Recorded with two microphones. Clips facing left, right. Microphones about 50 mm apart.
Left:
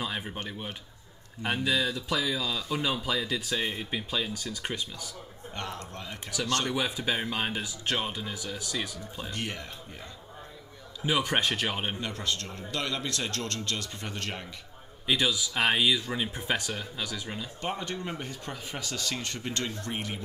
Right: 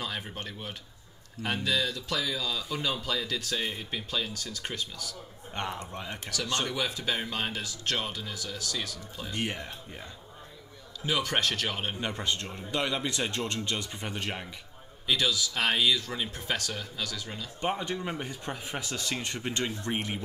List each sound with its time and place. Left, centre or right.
0.0 s speech: centre
5.5 s speech: centre
6.7 s speech: centre
9.3 s speech: right
11.1 s speech: centre
12.0 s speech: right
15.0 s speech: centre
17.6 s speech: centre